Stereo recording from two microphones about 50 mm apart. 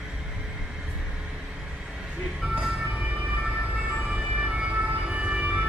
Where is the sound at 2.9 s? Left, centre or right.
Right.